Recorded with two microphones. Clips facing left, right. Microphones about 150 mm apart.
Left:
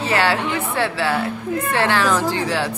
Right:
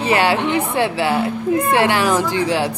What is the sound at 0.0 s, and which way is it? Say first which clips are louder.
A woman's voice: right 3 dB; 15° right (ahead or behind).